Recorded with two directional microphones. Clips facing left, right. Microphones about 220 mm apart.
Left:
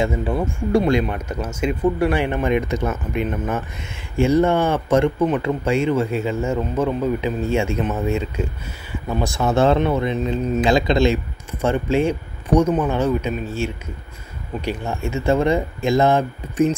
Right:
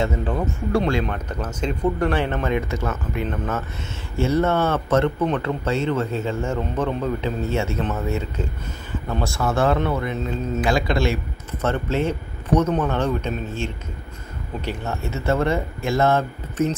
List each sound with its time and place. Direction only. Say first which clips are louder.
0.0 s a man's voice: left 2 dB; 10° left (ahead or behind)